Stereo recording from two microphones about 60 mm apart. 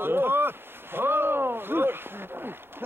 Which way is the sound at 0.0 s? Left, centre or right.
Right.